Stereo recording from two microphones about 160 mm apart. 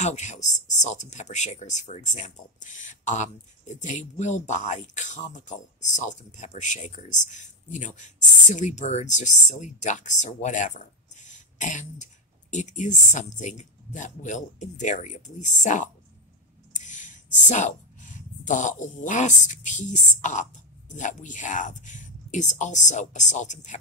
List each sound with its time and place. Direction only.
0.0 s a woman's voice: 45° left (ahead or behind)